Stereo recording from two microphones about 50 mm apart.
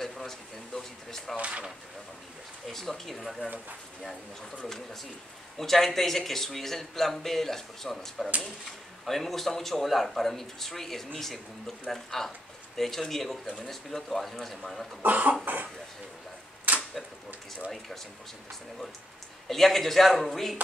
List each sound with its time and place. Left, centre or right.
0.0 s speech: centre
1.3 s speech: right
2.7 s speech: centre
4.6 s speech: centre
15.0 s speech: right
19.4 s speech: centre